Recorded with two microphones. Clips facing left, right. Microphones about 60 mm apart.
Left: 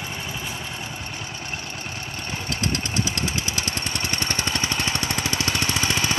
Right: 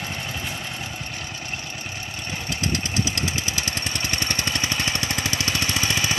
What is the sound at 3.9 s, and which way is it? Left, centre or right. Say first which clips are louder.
Vehicle: left 1 dB; left.